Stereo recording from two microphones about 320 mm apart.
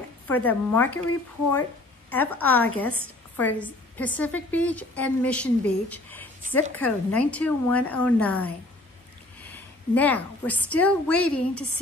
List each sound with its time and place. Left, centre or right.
0.3 s a woman's voice: centre
2.0 s a woman's voice: centre